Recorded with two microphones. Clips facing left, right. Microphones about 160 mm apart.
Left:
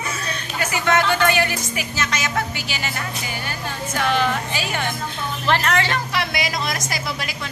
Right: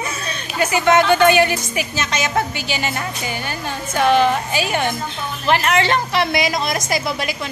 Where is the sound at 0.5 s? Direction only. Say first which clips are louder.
Right 5 dB; 20° right (ahead or behind).